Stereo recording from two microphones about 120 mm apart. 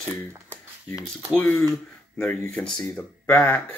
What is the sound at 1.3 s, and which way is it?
Speech, 15° left (ahead or behind).